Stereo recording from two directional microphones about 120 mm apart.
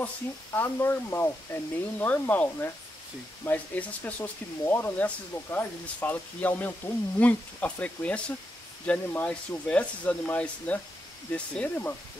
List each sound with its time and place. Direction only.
0.6 s speech: 15° left (ahead or behind)